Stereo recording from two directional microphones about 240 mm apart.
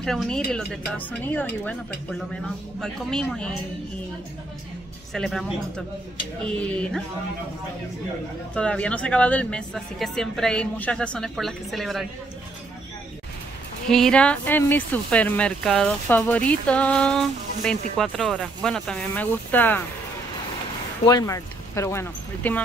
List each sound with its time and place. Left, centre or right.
0.0 s speech: centre
5.1 s speech: centre
8.5 s speech: centre
13.8 s speech: centre
21.0 s speech: centre